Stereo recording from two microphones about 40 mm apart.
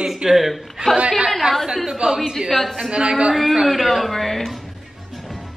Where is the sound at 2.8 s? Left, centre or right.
Right.